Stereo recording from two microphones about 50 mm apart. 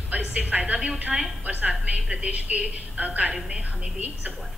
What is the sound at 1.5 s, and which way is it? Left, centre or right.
A woman's voice, right.